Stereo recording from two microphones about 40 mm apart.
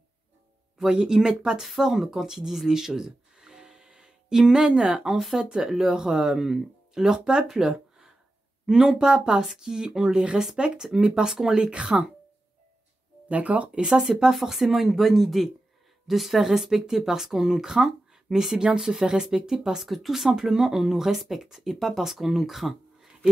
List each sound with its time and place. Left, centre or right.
0.9 s speech: centre
8.9 s speech: centre
13.3 s speech: right
13.7 s speech: right
14.3 s speech: centre
19.9 s speech: centre